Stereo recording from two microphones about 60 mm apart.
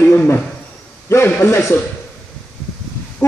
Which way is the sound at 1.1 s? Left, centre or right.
Left.